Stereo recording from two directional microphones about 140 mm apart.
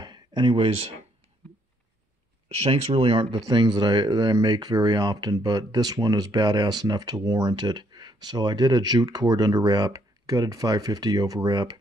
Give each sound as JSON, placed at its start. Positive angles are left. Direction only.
{"t": 0.0, "sound": "speech", "side_deg": -30}
{"t": 2.5, "sound": "speech", "side_deg": -45}